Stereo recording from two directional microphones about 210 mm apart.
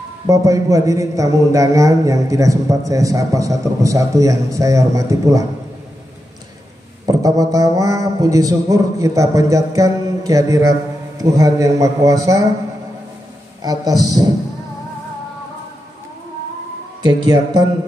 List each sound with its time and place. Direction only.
0.3 s a man's voice: 15° right (ahead or behind)
7.1 s a man's voice: 15° right (ahead or behind)
13.6 s a man's voice: 15° right (ahead or behind)
17.0 s speech: 20° right (ahead or behind)